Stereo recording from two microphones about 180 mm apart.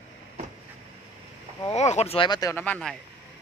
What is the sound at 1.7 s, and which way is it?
Speech, 40° left (ahead or behind).